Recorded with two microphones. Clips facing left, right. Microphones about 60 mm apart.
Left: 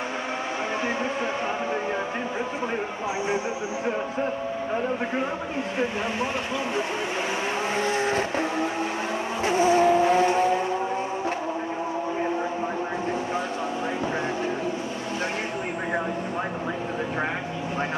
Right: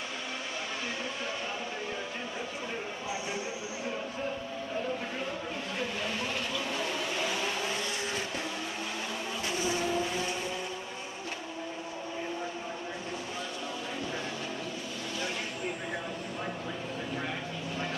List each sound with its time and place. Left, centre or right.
7.7 s vehicle: left